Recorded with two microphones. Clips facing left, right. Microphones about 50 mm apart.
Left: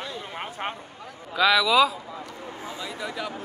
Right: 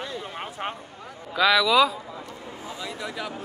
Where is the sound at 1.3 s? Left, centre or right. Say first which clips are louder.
Even; centre.